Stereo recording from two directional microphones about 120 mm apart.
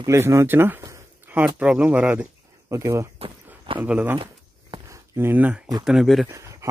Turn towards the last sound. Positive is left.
turn(degrees=-25)  # may be behind; listen again after turning